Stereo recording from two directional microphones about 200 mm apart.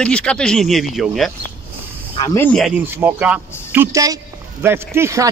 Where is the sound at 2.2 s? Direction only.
20° left (ahead or behind).